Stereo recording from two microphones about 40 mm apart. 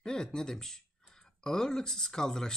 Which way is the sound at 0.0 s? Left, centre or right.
Centre.